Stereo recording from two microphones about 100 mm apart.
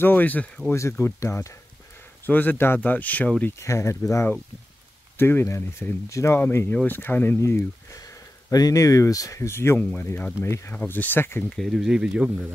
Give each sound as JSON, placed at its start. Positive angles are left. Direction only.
{"t": 0.0, "sound": "speech", "side_deg": 20}
{"t": 3.5, "sound": "speech", "side_deg": 30}
{"t": 6.4, "sound": "speech", "side_deg": 20}
{"t": 11.5, "sound": "speech", "side_deg": 0}